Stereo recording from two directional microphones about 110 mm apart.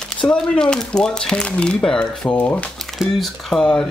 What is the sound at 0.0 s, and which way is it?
Speech, 5° left (ahead or behind).